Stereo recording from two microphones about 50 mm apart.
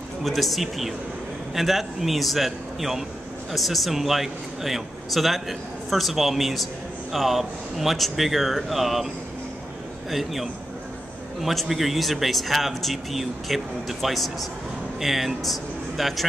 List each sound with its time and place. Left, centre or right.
0.2 s a man's voice: centre
10.1 s a man's voice: centre